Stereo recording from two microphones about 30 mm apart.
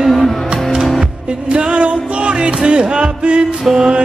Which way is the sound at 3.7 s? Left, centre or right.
Centre.